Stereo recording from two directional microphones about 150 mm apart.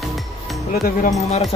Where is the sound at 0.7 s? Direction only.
75° left (ahead or behind).